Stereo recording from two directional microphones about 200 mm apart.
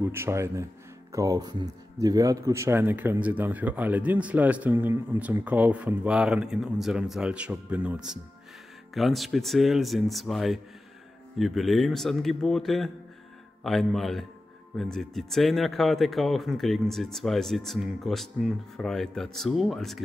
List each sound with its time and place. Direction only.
0.0 s speech: 10° right (ahead or behind)